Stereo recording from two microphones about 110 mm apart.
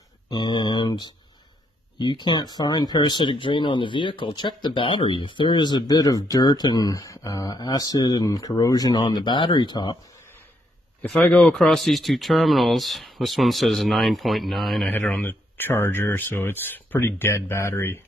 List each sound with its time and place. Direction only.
0.3 s speech: 45° left (ahead or behind)
11.1 s speech: 10° left (ahead or behind)
11.5 s speech: centre (ahead or behind)
14.9 s speech: 15° left (ahead or behind)